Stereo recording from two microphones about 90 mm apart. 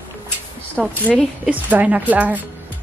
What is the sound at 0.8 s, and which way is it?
Speech, 5° right (ahead or behind).